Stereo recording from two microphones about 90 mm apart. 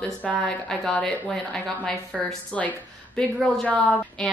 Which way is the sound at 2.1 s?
Centre (ahead or behind).